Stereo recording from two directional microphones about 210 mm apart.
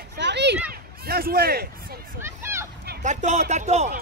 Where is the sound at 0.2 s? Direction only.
55° right (ahead or behind).